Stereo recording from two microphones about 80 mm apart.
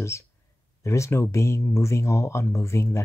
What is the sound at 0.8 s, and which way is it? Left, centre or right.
Speech, left.